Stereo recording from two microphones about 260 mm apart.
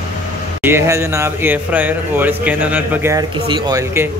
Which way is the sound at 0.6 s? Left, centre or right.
Centre.